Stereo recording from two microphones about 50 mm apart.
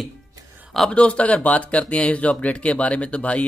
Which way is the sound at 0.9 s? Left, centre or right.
Left.